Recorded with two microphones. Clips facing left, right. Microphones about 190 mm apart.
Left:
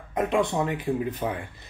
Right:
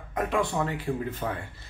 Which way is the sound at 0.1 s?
20° left (ahead or behind).